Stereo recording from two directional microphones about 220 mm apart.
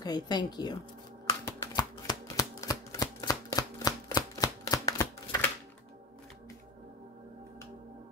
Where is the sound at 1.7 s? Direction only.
15° left (ahead or behind).